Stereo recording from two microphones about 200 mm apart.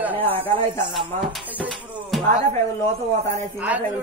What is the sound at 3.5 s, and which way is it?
Speech, 10° right (ahead or behind).